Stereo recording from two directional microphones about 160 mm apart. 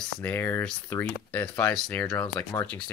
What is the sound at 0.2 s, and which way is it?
Speech, 10° left (ahead or behind).